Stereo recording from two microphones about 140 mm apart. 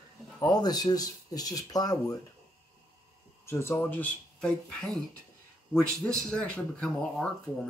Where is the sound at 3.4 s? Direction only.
15° left (ahead or behind).